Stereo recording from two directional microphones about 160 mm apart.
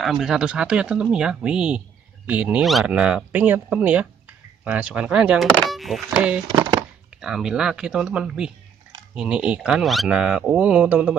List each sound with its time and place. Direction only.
0.0 s speech: 5° right (ahead or behind)
6.4 s a sound: 25° right (ahead or behind)
7.2 s speech: 5° right (ahead or behind)